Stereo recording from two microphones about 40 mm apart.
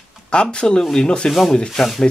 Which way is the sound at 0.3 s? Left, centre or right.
Left.